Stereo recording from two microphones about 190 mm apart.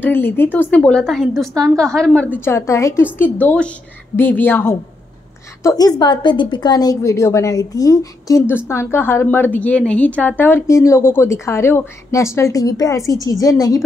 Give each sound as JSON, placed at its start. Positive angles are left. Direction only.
{"t": 0.0, "sound": "a woman's voice", "side_deg": 10}